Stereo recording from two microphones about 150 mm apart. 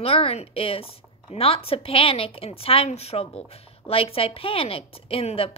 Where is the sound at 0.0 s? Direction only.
40° left (ahead or behind).